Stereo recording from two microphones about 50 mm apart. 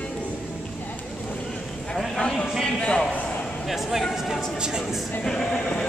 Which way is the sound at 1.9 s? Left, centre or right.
Centre.